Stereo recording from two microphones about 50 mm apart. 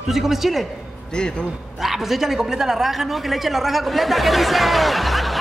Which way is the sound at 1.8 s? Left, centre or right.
Centre.